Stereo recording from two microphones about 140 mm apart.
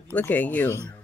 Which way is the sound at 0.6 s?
20° right (ahead or behind).